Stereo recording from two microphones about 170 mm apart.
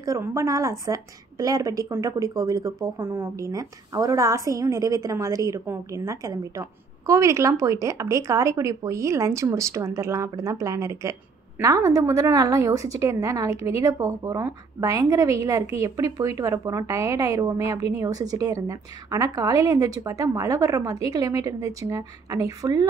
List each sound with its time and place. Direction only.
0.0 s a woman's voice: 20° right (ahead or behind)